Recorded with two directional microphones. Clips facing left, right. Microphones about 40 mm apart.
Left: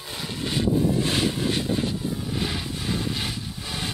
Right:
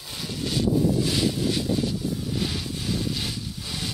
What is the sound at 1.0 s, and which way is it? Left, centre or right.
Vehicle, left.